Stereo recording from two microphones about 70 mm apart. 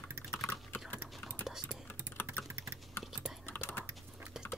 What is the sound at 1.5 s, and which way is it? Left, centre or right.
Whispering, centre.